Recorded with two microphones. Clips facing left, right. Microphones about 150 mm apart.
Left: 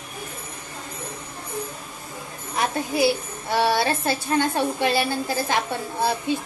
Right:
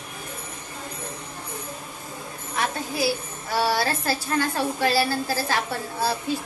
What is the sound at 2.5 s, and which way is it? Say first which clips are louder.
A woman's voice: left 4 dB; 25° left (ahead or behind).